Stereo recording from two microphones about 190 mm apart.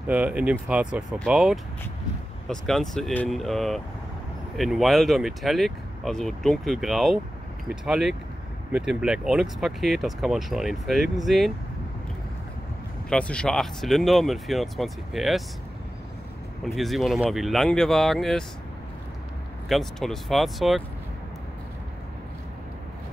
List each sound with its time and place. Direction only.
0.0 s speech: 10° right (ahead or behind)
13.1 s speech: 5° left (ahead or behind)
16.6 s speech: centre (ahead or behind)
19.7 s speech: centre (ahead or behind)